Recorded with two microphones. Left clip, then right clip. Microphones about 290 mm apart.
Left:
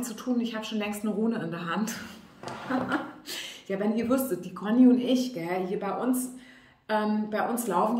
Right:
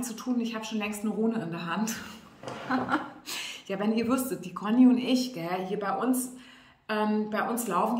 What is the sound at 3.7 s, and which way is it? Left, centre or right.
Speech, centre.